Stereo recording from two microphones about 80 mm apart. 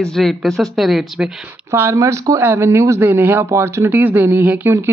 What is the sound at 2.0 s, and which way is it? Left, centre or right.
Speech, right.